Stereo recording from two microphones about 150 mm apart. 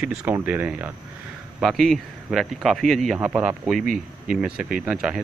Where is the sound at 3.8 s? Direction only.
65° right (ahead or behind).